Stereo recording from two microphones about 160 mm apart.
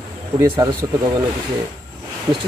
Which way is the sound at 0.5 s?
25° right (ahead or behind).